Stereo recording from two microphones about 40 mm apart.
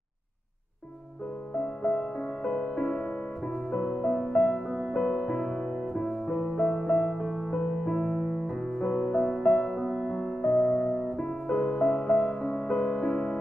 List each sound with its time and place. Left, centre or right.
1.8 s music: left
2.7 s music: centre
4.0 s music: centre
9.0 s music: centre
10.5 s electric piano: centre
10.8 s music: centre